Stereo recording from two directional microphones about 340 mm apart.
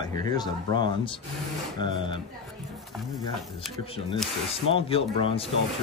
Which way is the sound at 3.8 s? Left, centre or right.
Centre.